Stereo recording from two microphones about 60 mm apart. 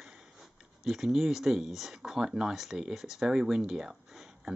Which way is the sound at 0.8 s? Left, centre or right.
Centre.